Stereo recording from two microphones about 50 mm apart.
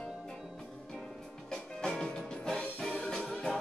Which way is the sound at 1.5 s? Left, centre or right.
Centre.